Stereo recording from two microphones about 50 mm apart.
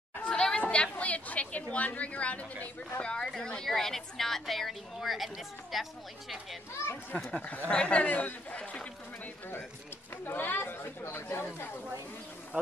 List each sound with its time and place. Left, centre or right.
0.2 s chatter: centre
0.6 s a sound: left
3.3 s a woman's voice: centre
7.4 s a man's voice: left
10.2 s speech: left